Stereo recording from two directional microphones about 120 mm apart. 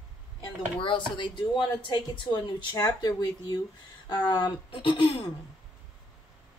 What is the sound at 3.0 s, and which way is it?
A woman's voice, 35° left (ahead or behind).